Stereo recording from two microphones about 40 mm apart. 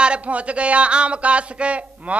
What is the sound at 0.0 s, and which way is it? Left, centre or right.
Speech, right.